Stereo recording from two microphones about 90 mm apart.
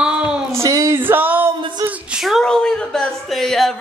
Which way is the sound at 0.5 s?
35° right (ahead or behind).